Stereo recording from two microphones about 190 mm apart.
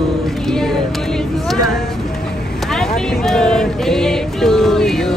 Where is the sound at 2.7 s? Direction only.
Centre (ahead or behind).